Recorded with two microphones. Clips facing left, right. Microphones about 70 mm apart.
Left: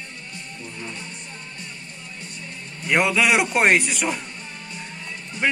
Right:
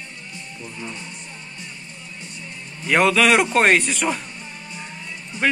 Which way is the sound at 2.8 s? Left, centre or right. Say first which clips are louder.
Right 3 dB; centre.